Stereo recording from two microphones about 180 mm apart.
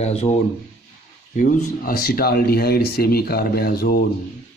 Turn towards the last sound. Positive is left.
turn(degrees=55)  # may be behind; listen again after turning